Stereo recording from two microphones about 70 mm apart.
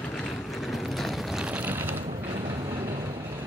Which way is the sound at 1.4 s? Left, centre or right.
Right.